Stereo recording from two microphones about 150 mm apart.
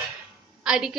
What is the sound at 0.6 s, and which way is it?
Speech, 5° right (ahead or behind).